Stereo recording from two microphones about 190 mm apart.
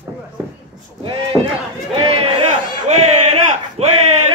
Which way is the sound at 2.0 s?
30° right (ahead or behind).